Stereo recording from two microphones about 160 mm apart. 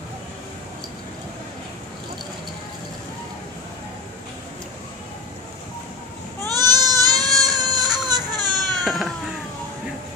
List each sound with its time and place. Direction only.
6.5 s goat: 25° right (ahead or behind)
7.3 s baby cry: 25° right (ahead or behind)
8.8 s cat: centre (ahead or behind)